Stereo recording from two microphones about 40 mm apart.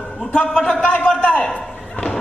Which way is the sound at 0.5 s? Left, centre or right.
Left.